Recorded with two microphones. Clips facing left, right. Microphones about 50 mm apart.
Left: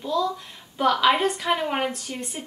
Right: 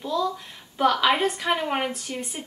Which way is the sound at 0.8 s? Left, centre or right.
Centre.